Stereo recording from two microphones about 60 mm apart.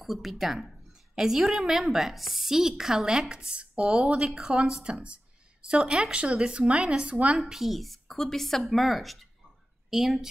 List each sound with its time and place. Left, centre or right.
0.0 s a woman's voice: centre
7.3 s a woman's voice: centre